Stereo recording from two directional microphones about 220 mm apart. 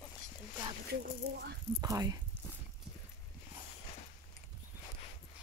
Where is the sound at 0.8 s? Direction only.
50° right (ahead or behind).